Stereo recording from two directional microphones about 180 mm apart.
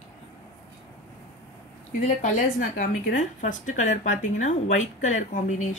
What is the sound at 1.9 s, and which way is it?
A woman's voice, 40° left (ahead or behind).